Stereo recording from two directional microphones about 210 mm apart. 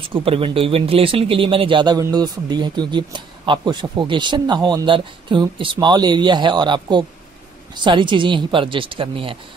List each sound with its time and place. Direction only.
0.0 s speech: 25° right (ahead or behind)